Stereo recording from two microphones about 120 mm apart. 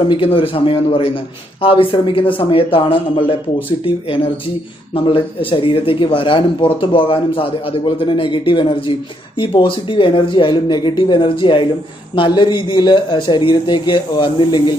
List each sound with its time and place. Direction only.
0.1 s speech: 50° left (ahead or behind)